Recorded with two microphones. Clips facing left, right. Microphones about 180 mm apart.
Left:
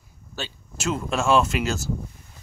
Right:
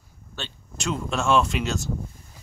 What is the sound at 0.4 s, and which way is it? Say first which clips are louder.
Speech: left 2 dB; 5° left (ahead or behind).